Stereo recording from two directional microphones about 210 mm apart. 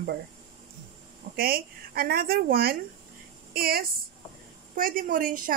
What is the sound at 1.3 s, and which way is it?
Speech, 45° right (ahead or behind).